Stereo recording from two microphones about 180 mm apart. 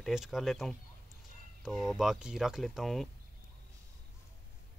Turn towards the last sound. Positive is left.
turn(degrees=0)  # may be behind; listen again after turning